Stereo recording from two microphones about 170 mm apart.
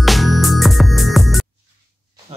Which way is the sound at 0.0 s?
Centre (ahead or behind).